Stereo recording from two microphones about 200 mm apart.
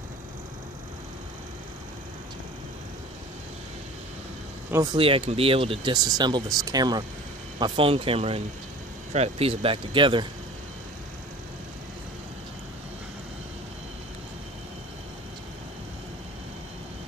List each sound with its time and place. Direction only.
4.6 s speech: 15° right (ahead or behind)
4.9 s speech: 25° right (ahead or behind)